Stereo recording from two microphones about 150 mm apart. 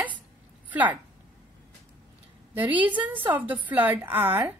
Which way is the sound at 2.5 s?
10° right (ahead or behind).